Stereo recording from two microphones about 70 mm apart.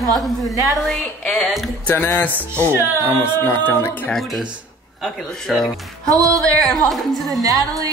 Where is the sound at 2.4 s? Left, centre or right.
Right.